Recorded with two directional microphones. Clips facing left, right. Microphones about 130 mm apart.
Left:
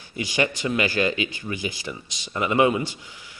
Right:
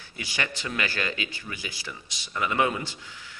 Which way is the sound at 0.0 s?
20° left (ahead or behind).